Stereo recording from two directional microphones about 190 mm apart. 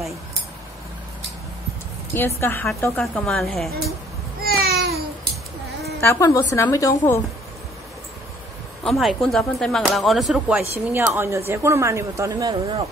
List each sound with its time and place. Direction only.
2.1 s a woman's voice: 10° left (ahead or behind)
4.4 s babbling: 55° right (ahead or behind)
5.9 s a woman's voice: 15° left (ahead or behind)
8.8 s a woman's voice: centre (ahead or behind); by 12.5 s 20° right (ahead or behind)